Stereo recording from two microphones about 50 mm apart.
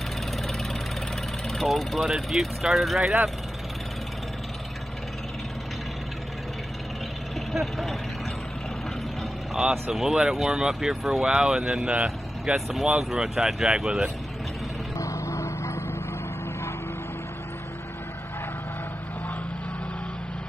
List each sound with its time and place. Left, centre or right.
1.5 s speech: centre
7.5 s speech: centre
9.6 s speech: centre
12.5 s speech: centre
15.0 s vehicle: left